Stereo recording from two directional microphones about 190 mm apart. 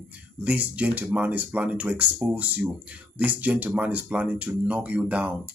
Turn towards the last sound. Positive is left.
turn(degrees=-5)  # may be behind; listen again after turning